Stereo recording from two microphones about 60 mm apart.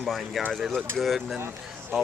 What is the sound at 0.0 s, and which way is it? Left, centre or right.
Speech, centre.